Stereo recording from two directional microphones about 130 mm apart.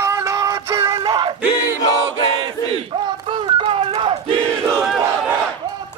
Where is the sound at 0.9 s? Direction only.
35° right (ahead or behind).